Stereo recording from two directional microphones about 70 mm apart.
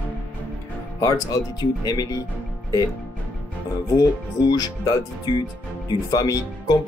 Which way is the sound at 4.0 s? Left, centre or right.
Left.